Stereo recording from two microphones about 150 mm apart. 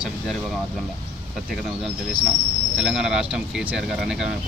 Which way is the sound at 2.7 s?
5° right (ahead or behind).